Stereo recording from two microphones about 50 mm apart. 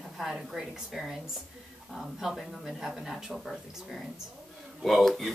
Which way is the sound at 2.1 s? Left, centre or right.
Centre.